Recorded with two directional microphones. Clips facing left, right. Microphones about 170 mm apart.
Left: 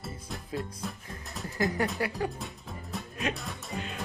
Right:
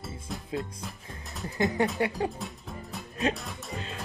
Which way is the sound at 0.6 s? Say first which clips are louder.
Left 3 dB; centre (ahead or behind).